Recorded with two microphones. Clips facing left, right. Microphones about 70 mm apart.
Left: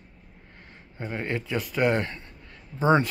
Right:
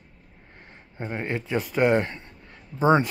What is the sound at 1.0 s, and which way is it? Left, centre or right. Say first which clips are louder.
Speech: right 1 dB; right.